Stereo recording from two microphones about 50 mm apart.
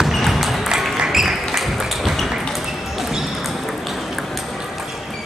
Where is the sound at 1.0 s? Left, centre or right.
Centre.